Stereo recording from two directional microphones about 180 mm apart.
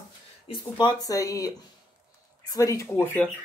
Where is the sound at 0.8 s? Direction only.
20° left (ahead or behind).